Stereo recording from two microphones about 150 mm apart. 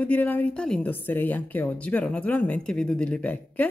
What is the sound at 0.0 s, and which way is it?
A woman's voice, 10° left (ahead or behind).